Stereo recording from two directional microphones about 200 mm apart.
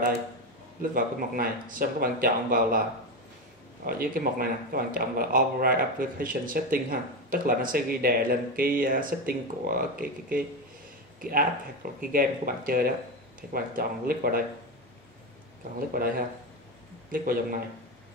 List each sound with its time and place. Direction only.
0.9 s speech: 45° right (ahead or behind)
3.8 s speech: 45° right (ahead or behind)
15.9 s speech: 45° right (ahead or behind)